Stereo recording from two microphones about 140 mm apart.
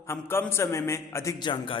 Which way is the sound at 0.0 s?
15° left (ahead or behind).